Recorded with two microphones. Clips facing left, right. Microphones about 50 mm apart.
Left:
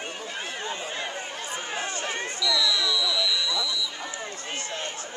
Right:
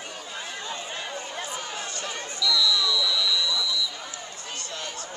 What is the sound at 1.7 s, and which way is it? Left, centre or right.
Run, left.